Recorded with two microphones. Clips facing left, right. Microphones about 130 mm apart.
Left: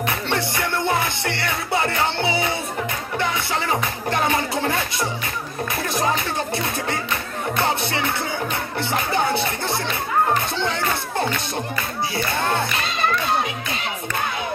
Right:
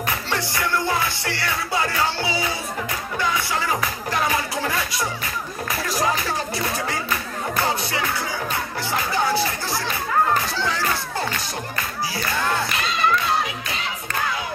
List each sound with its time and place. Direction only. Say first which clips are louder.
0.1 s music: left 2 dB; 25° left (ahead or behind)
5.9 s speech: even; 25° left (ahead or behind)